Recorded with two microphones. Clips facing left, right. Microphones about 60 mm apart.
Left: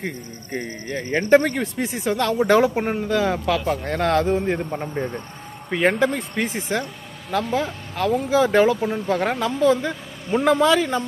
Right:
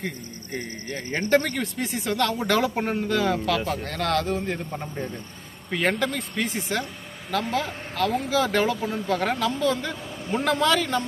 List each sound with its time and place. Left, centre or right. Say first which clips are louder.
0.0 s a man's voice: left 3 dB; left; by 3.3 s centre
3.4 s a man's voice: left 4 dB; left